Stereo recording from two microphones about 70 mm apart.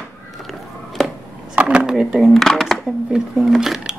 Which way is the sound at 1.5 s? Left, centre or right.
Centre.